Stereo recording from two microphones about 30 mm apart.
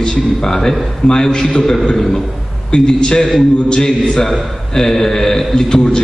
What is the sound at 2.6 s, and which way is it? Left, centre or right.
A man's voice, left.